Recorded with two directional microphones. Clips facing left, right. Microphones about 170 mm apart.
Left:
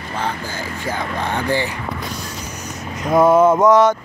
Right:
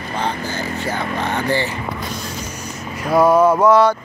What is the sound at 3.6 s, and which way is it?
Speech, 20° left (ahead or behind).